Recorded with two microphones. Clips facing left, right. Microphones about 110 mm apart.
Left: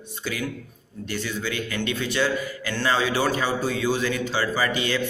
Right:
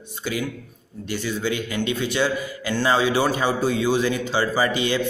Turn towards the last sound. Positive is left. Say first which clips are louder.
# right 3 dB
turn(degrees=-20)  # may be behind; listen again after turning